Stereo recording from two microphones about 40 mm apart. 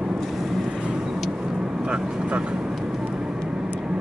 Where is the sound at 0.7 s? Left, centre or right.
Right.